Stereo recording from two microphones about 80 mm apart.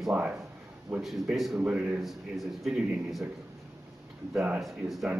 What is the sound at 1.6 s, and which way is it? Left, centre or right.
Speech, centre.